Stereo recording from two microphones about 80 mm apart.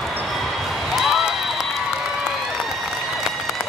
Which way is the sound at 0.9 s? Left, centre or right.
Centre.